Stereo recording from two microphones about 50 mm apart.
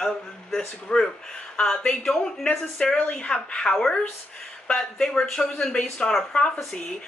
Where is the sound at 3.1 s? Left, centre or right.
Left.